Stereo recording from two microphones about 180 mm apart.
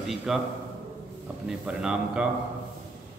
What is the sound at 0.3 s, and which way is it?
Speech, centre (ahead or behind).